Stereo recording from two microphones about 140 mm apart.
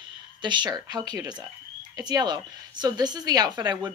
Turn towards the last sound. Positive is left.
turn(degrees=-30)  # may be behind; listen again after turning